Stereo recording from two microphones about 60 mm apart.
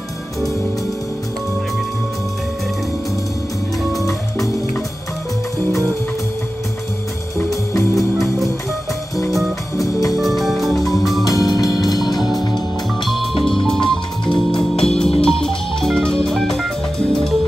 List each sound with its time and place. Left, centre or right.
7.3 s music: left
9.3 s music: centre
11.2 s music: left
12.2 s music: centre